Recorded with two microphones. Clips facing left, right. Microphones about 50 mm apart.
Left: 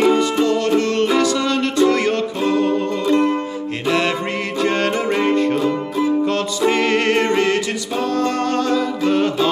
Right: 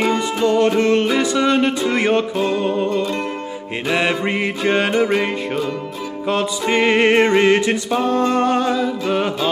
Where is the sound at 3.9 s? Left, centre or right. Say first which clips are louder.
Right 1 dB; centre.